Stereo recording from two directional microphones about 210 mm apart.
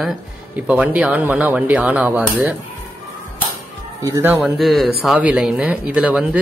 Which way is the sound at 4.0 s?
10° right (ahead or behind).